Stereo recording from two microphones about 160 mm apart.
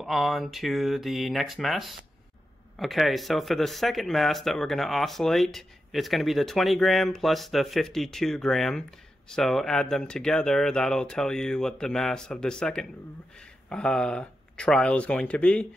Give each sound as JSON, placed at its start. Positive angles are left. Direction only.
{"t": 0.0, "sound": "speech", "side_deg": 0}